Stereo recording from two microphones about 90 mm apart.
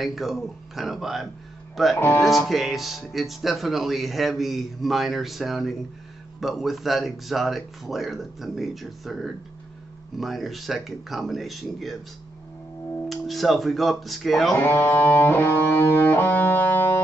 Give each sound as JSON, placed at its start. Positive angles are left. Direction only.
{"t": 0.0, "sound": "speech", "side_deg": 0}
{"t": 2.0, "sound": "speech", "side_deg": 25}
{"t": 2.2, "sound": "speech", "side_deg": 0}
{"t": 13.1, "sound": "speech", "side_deg": 0}
{"t": 14.6, "sound": "music", "side_deg": 25}